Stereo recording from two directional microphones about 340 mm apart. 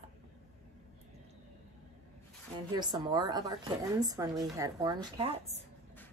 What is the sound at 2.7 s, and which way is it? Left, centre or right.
A woman's voice, centre.